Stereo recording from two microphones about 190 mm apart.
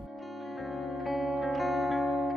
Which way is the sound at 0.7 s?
Centre (ahead or behind).